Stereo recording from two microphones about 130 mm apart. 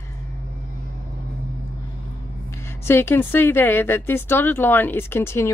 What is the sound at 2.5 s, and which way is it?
A woman's voice, 20° left (ahead or behind).